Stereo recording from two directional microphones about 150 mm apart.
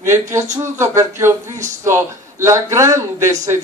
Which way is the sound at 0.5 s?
20° right (ahead or behind).